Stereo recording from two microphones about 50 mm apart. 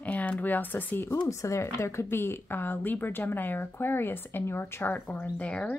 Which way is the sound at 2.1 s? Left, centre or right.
Left.